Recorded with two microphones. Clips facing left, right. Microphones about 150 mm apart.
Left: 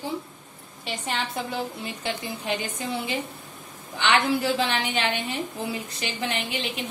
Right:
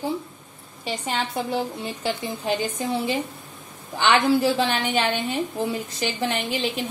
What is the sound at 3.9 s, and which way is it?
A woman's voice, 35° right (ahead or behind).